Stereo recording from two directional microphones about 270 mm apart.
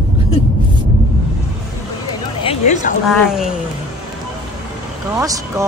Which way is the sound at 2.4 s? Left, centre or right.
Left.